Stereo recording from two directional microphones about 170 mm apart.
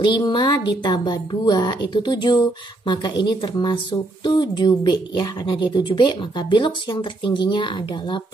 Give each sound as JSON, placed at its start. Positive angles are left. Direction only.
{"t": 0.0, "sound": "a woman's voice", "side_deg": 25}